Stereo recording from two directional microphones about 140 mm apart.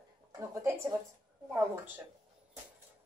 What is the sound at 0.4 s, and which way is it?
Speech, 20° right (ahead or behind).